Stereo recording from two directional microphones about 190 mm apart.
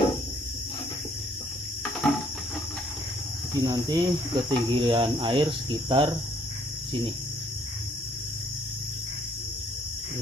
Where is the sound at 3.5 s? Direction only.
20° right (ahead or behind).